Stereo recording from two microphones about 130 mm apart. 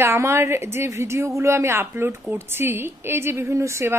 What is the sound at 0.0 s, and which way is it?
A woman's voice, 20° right (ahead or behind).